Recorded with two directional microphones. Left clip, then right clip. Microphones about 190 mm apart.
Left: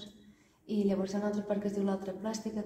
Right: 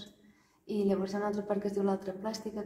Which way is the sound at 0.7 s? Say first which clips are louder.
Right 1 dB; 15° right (ahead or behind).